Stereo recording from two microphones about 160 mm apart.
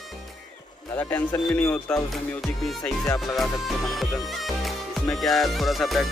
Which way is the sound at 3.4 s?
Centre (ahead or behind).